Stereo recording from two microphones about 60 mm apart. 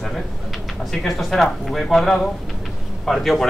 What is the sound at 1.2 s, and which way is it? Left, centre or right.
Speech, centre.